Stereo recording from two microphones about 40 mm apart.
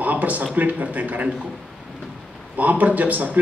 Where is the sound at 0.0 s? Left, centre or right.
Right.